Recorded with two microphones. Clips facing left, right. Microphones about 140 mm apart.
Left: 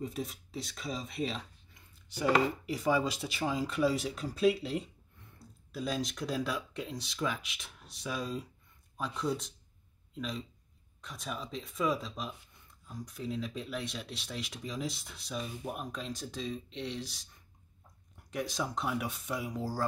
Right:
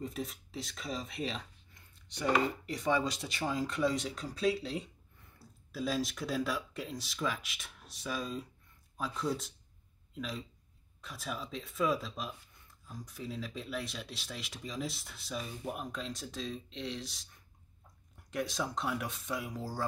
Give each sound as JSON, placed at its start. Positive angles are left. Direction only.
{"t": 0.0, "sound": "speech", "side_deg": 0}